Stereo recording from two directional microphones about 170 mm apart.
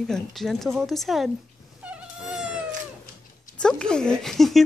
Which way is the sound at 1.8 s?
5° right (ahead or behind).